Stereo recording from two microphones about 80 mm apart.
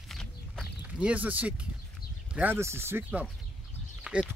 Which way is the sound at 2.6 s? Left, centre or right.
Right.